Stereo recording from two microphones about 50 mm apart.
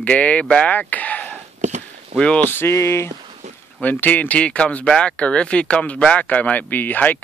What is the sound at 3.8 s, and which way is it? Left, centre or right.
Speech, left.